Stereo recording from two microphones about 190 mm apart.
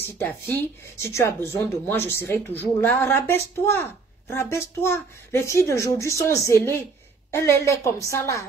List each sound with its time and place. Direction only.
0.0 s speech: 10° left (ahead or behind)